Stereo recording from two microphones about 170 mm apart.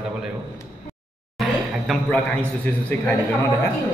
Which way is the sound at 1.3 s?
Centre (ahead or behind).